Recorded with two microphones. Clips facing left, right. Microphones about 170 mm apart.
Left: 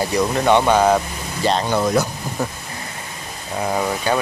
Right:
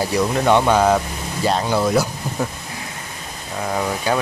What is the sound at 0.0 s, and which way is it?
Speech, 5° right (ahead or behind).